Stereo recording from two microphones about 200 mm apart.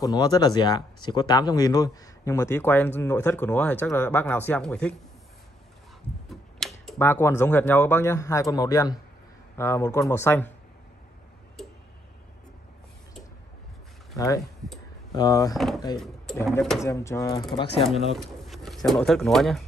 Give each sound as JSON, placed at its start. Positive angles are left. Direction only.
{"t": 0.0, "sound": "speech", "side_deg": 20}
{"t": 6.9, "sound": "speech", "side_deg": 10}
{"t": 14.1, "sound": "speech", "side_deg": 20}
{"t": 15.5, "sound": "speech", "side_deg": 0}
{"t": 16.8, "sound": "speech", "side_deg": 15}
{"t": 18.1, "sound": "speech", "side_deg": 0}